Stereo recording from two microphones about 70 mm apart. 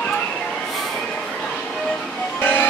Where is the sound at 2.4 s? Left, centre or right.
Left.